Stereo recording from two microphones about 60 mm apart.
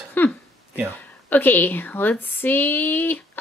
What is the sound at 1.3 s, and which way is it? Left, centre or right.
Speech, left.